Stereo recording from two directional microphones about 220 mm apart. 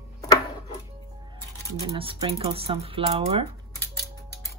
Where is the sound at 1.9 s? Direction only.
20° right (ahead or behind).